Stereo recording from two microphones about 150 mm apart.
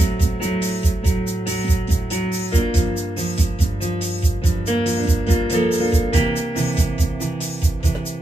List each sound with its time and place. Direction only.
5.2 s music: 40° left (ahead or behind)